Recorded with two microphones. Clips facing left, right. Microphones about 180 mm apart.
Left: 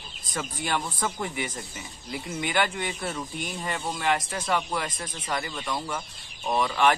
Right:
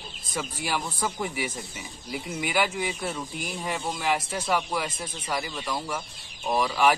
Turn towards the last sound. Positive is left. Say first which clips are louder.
# even
turn(degrees=-5)  # may be behind; listen again after turning